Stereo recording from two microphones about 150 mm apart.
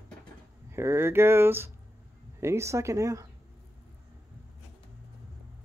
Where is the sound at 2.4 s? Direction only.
20° right (ahead or behind).